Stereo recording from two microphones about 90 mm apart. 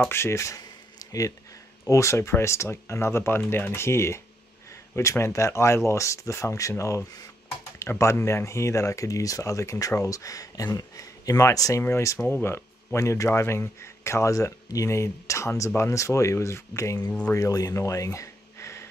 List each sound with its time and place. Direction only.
0.1 s speech: 30° left (ahead or behind)